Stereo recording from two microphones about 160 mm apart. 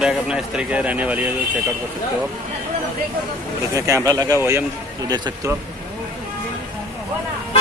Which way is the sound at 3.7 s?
20° right (ahead or behind).